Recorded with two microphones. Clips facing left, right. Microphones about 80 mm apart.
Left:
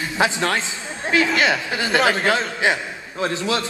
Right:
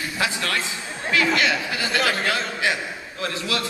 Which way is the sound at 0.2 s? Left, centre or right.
Left.